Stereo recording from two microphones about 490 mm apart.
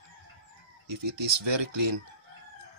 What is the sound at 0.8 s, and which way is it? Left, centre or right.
Speech, right.